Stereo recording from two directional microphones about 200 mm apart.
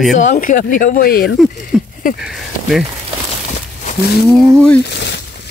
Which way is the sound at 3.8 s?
50° left (ahead or behind).